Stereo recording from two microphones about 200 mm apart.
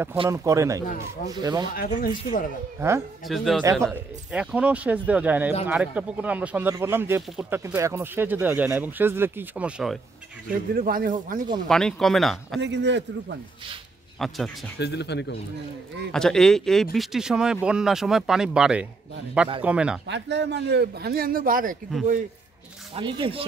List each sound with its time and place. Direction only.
0.3 s speech: 15° right (ahead or behind)
1.7 s speech: 45° left (ahead or behind)
3.3 s speech: centre (ahead or behind)
10.7 s a man's voice: 45° right (ahead or behind)
11.6 s speech: 5° left (ahead or behind)
12.5 s speech: 60° right (ahead or behind)
14.1 s speech: centre (ahead or behind)
14.8 s speech: 55° left (ahead or behind)
16.1 s speech: 5° left (ahead or behind)
20.1 s speech: 60° right (ahead or behind); by 21.7 s 45° right (ahead or behind)
22.9 s speech: 25° right (ahead or behind)